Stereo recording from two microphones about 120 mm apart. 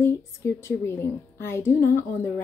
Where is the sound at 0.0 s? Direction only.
25° left (ahead or behind).